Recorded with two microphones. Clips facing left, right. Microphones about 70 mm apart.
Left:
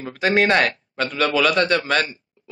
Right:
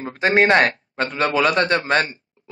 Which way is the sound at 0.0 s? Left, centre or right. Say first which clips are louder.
Right 2 dB; right.